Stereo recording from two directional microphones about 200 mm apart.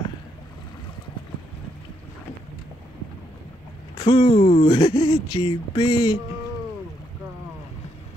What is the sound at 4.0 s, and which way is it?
Speech, 25° left (ahead or behind).